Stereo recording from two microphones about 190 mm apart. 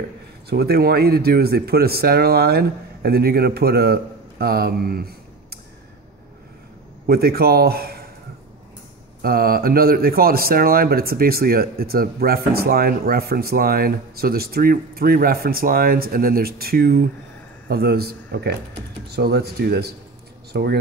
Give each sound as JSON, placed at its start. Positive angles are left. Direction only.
{"t": 0.5, "sound": "speech", "side_deg": -55}
{"t": 7.1, "sound": "speech", "side_deg": -55}
{"t": 9.2, "sound": "speech", "side_deg": -50}